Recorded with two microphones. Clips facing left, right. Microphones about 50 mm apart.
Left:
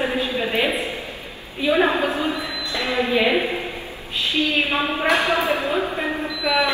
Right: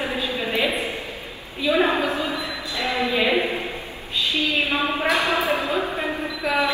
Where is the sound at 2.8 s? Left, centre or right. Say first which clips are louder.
Left 2 dB; left.